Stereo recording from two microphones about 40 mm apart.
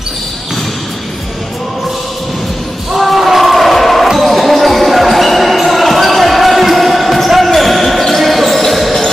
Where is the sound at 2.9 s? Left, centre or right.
Centre.